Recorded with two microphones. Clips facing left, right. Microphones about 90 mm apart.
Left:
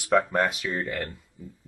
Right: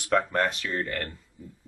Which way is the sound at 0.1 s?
5° left (ahead or behind).